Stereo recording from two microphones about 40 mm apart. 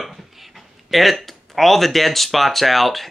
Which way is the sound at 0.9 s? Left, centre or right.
Centre.